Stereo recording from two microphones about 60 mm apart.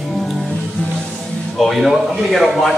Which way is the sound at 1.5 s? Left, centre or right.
Centre.